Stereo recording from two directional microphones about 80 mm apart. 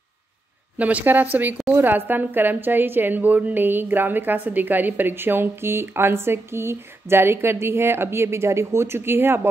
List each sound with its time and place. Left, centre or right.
0.7 s a woman's voice: centre